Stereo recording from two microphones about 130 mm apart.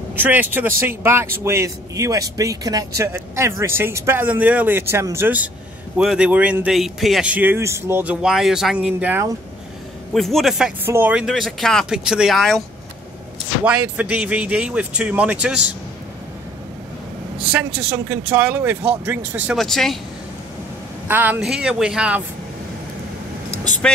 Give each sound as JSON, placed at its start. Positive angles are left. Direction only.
{"t": 0.1, "sound": "a man's voice", "side_deg": -15}
{"t": 10.1, "sound": "speech", "side_deg": 0}
{"t": 10.9, "sound": "speech", "side_deg": -15}
{"t": 13.7, "sound": "a man's voice", "side_deg": -10}
{"t": 17.5, "sound": "a man's voice", "side_deg": -10}
{"t": 19.5, "sound": "speech", "side_deg": 0}
{"t": 21.1, "sound": "speech", "side_deg": -15}